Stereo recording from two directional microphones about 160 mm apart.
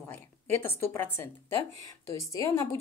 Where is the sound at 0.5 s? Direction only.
15° left (ahead or behind).